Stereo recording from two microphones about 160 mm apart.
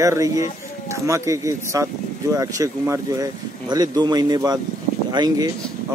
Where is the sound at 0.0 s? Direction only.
20° right (ahead or behind).